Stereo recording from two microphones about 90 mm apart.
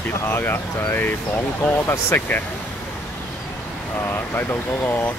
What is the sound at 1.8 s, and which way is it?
Speech, 35° left (ahead or behind).